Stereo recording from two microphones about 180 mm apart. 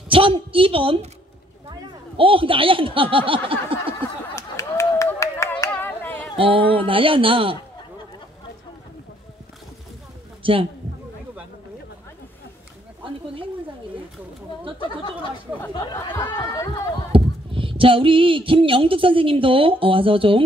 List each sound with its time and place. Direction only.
0.1 s a woman's voice: 30° right (ahead or behind)
3.9 s a sound: 15° left (ahead or behind)
5.7 s clapping: 10° left (ahead or behind)
6.3 s speech: 30° right (ahead or behind)
10.4 s a man's voice: 30° right (ahead or behind)
15.7 s speech: 15° left (ahead or behind)
17.1 s speech: 30° right (ahead or behind)